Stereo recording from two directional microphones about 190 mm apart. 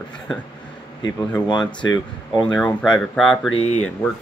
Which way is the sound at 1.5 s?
20° left (ahead or behind).